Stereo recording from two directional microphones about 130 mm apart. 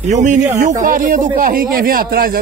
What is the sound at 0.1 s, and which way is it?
A man's voice, 65° right (ahead or behind).